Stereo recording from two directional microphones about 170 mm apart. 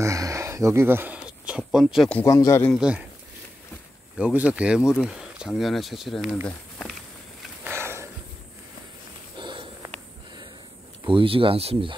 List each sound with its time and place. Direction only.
0.0 s a sound: 20° right (ahead or behind); by 2.1 s centre (ahead or behind)
2.1 s speech: 15° left (ahead or behind)
2.7 s speech: 5° right (ahead or behind)
4.2 s speech: 5° right (ahead or behind); by 7.0 s 10° left (ahead or behind)
7.6 s a sound: 15° right (ahead or behind)
9.4 s sniff: 30° right (ahead or behind)
11.1 s speech: 30° right (ahead or behind)